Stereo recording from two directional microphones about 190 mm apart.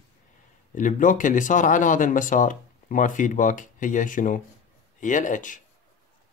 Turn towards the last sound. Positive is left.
turn(degrees=45)  # may be behind; listen again after turning